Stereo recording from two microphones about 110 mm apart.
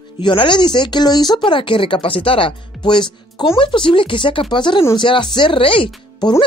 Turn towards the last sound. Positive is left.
turn(degrees=45)  # may be behind; listen again after turning